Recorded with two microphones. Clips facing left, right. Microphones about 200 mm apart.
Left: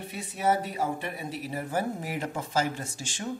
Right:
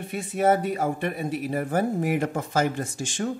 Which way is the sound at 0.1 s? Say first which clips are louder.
Right 6 dB; 55° right (ahead or behind).